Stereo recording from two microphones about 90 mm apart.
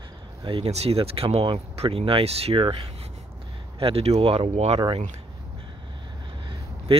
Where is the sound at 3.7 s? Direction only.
90° right; by 5.0 s 65° right (ahead or behind).